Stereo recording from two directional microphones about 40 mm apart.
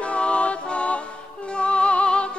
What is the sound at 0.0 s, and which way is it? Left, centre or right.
Music, left.